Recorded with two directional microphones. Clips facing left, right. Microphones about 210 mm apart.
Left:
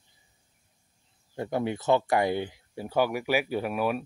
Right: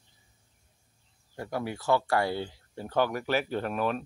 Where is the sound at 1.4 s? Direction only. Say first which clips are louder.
Left 5 dB; 20° left (ahead or behind).